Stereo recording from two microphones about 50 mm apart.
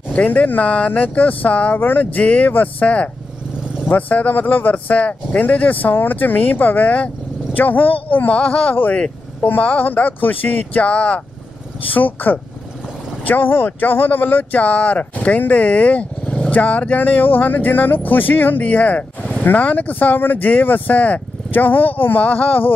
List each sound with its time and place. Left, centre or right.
0.5 s speech: left
1.8 s speech: left
2.1 s speech: left
8.4 s speech: left
11.9 s speech: left
22.2 s speech: left